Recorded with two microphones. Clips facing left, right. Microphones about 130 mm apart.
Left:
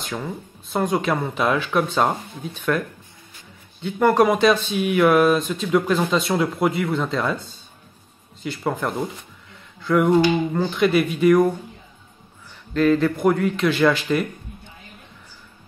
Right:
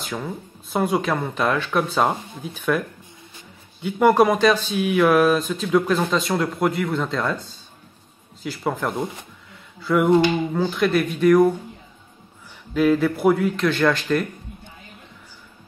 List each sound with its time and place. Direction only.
0.0 s speech: centre (ahead or behind)
3.8 s speech: 10° right (ahead or behind)
4.3 s speech: centre (ahead or behind)
12.7 s speech: 5° right (ahead or behind)